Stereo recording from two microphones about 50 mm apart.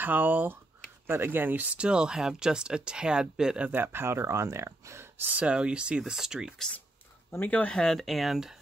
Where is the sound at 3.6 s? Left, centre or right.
Right.